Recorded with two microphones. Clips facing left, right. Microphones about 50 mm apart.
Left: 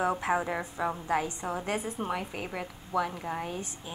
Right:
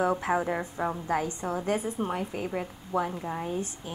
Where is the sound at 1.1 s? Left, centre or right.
Left.